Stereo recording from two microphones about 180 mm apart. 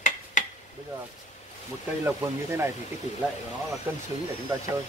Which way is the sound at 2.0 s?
15° right (ahead or behind).